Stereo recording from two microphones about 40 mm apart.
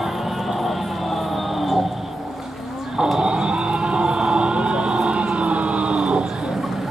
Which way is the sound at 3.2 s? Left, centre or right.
Centre.